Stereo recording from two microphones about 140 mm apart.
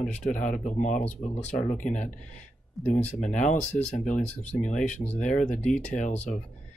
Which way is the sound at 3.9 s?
60° left (ahead or behind).